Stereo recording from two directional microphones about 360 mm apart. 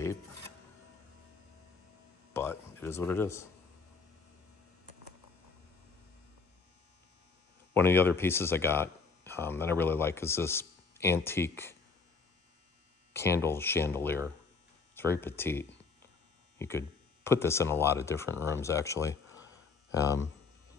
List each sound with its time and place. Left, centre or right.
2.3 s speech: centre
7.7 s speech: centre
13.1 s speech: centre